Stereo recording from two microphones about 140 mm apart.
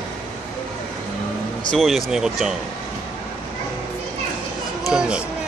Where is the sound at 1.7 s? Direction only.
Centre (ahead or behind).